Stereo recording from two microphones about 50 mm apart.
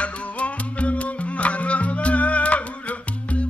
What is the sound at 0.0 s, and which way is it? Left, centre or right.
Music, left.